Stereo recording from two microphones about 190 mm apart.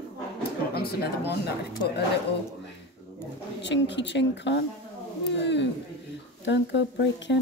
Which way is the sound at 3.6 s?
70° left (ahead or behind).